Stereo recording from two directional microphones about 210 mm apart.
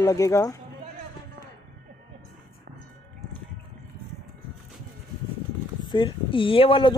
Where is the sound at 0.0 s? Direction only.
15° left (ahead or behind).